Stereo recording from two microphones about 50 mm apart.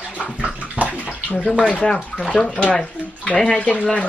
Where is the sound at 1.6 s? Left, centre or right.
Left.